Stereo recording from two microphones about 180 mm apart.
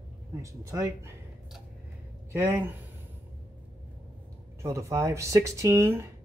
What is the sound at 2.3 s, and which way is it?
Speech, 10° right (ahead or behind).